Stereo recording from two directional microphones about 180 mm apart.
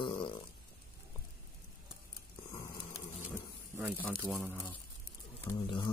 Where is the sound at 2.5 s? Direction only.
25° left (ahead or behind).